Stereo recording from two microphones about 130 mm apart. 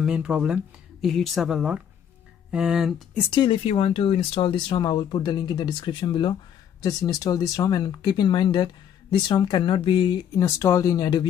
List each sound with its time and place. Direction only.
0.0 s speech: 5° right (ahead or behind)
3.3 s speech: 40° left (ahead or behind)
6.8 s speech: 25° left (ahead or behind)
10.3 s speech: 25° left (ahead or behind)